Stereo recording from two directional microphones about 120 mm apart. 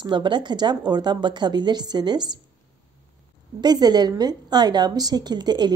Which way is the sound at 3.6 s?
35° right (ahead or behind).